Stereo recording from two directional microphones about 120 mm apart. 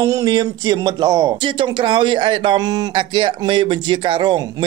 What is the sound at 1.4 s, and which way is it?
Speech, 45° right (ahead or behind).